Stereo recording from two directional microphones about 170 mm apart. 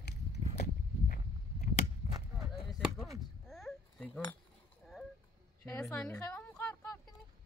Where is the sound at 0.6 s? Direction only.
55° left (ahead or behind).